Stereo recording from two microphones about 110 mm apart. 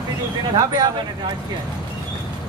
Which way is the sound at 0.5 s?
35° right (ahead or behind).